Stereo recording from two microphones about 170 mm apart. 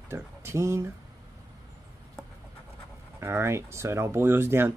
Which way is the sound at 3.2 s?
15° right (ahead or behind).